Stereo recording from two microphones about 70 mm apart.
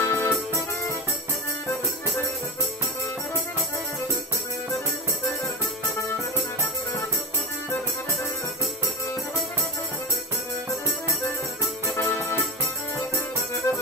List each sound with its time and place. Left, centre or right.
0.0 s music: left
12.0 s music: left
13.7 s music: left